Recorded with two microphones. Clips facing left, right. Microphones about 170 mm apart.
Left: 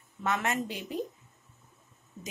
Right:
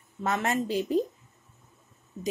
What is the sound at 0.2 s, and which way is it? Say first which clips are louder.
Speech: right 3 dB; 35° right (ahead or behind).